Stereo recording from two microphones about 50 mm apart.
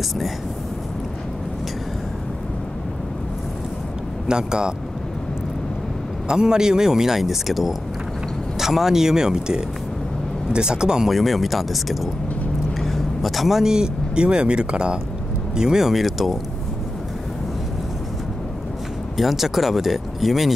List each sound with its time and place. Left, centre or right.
4.3 s speech: centre
6.2 s speech: centre
11.1 s speech: centre
19.1 s speech: centre